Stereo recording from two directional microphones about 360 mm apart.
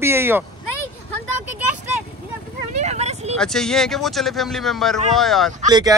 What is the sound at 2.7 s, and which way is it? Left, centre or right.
Vehicle, centre.